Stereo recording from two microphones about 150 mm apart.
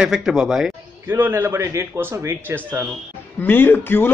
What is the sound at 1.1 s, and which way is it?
A man's voice, 15° right (ahead or behind).